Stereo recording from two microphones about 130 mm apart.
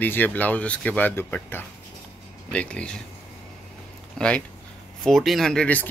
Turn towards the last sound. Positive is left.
turn(degrees=10)  # may be behind; listen again after turning